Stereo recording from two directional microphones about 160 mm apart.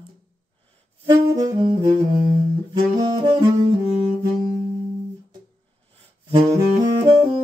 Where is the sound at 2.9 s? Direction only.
25° right (ahead or behind).